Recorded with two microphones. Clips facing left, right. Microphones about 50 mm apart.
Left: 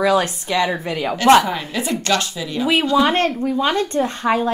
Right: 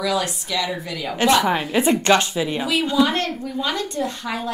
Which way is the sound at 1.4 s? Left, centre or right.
Right.